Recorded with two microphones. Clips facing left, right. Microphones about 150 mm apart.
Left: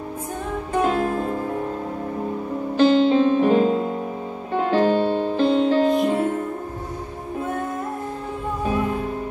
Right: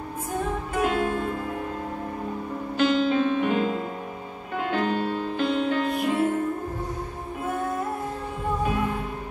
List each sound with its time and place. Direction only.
0.7 s music: 30° left (ahead or behind)
2.8 s music: 30° left (ahead or behind)